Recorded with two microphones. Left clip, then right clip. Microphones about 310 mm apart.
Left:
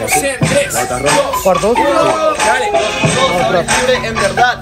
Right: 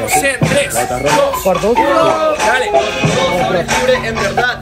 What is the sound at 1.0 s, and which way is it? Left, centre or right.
Speech, left.